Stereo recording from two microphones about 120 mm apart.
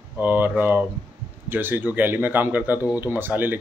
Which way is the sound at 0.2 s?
15° right (ahead or behind).